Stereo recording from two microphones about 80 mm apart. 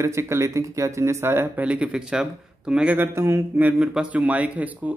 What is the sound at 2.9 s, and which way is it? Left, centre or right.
Speech, right.